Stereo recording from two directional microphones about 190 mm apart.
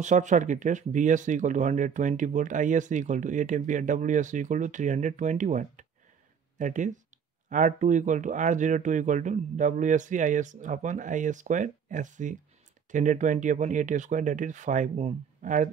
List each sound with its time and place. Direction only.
0.0 s speech: 40° right (ahead or behind)